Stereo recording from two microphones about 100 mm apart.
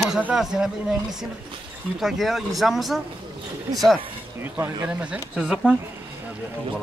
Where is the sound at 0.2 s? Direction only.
10° right (ahead or behind).